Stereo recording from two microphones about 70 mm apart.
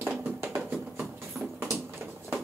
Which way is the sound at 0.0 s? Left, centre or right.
Right.